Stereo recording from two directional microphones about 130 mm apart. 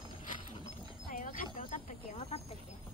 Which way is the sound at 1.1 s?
90° left.